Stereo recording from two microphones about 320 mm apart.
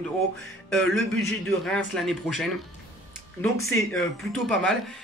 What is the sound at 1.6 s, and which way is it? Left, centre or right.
Speech, centre.